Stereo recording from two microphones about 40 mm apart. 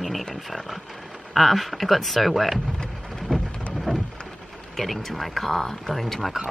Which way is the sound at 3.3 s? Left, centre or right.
Centre.